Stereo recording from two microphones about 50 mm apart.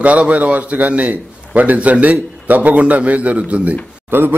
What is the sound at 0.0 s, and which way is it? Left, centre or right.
A man's voice, right.